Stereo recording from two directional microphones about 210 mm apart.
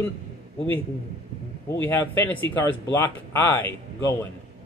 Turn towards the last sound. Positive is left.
turn(degrees=15)  # may be behind; listen again after turning